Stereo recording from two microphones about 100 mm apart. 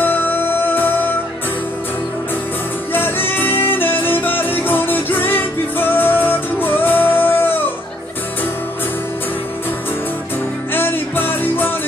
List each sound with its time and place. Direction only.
0.0 s music: 20° left (ahead or behind)
2.9 s music: 20° left (ahead or behind)
10.7 s music: 20° left (ahead or behind)